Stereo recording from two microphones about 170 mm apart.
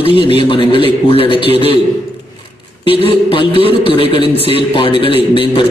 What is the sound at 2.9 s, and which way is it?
A man's voice, 30° left (ahead or behind).